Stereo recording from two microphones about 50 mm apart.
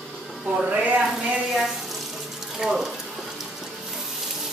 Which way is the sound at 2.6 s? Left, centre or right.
Centre.